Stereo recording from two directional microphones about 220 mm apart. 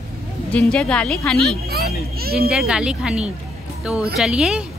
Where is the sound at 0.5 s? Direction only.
5° left (ahead or behind).